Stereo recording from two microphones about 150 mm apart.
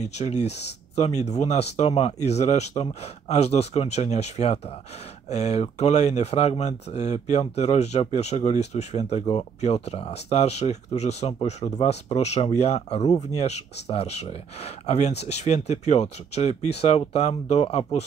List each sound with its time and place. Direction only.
0.2 s speech: 50° left (ahead or behind)